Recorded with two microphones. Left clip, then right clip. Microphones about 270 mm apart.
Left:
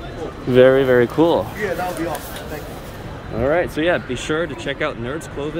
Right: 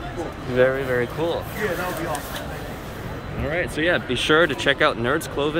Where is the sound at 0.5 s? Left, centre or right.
Left.